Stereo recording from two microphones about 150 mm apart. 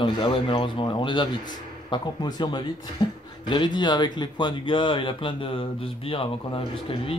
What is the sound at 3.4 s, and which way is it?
Speech, 30° left (ahead or behind).